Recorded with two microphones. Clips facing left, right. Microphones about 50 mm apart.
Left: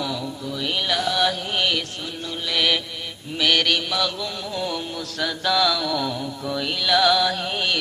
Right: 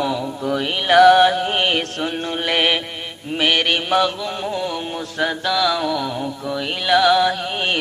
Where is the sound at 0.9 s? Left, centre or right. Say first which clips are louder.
Right 16 dB; right.